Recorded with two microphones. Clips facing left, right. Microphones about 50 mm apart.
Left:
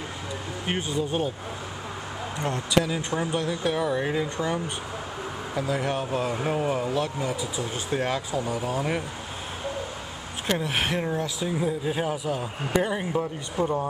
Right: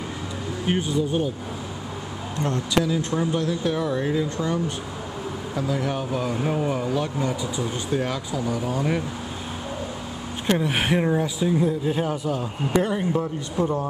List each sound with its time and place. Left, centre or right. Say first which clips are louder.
0.7 s speech: right 3 dB; centre
2.4 s speech: right 2 dB; centre
3.3 s speech: right 2 dB; centre
4.1 s speech: right 2 dB; centre
5.6 s speech: right 1 dB; centre
5.9 s speech: right 1 dB; centre
8.3 s speech: right 2 dB; left
10.5 s speech: right 4 dB; centre
11.4 s speech: right 4 dB; centre